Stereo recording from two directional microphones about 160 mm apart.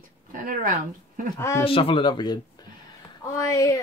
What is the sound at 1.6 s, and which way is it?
A woman's voice, 35° left (ahead or behind).